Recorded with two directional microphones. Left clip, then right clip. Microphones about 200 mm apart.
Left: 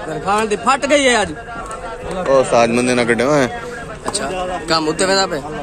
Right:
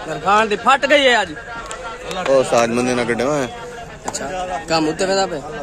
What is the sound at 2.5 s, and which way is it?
Speech, 20° right (ahead or behind).